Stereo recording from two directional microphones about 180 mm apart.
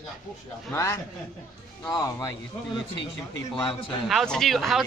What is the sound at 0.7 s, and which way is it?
A man's voice, 15° left (ahead or behind).